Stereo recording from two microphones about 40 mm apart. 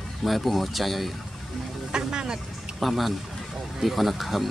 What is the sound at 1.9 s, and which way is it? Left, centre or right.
Speech, right.